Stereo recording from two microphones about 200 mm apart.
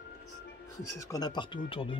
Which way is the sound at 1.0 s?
20° left (ahead or behind).